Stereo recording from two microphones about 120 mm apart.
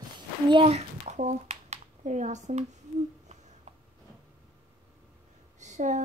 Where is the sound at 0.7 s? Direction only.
75° right (ahead or behind).